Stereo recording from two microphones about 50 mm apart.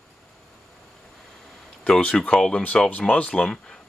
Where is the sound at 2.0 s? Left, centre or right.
Left.